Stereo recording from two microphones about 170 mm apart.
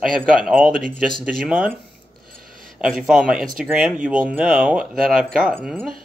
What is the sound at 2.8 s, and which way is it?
Speech, 5° right (ahead or behind).